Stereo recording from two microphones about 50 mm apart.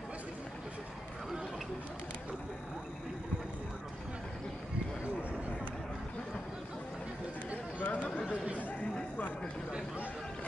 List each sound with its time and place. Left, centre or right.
7.8 s chatter: left